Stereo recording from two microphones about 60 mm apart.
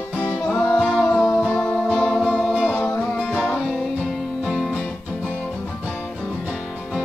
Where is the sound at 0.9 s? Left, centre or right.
Centre.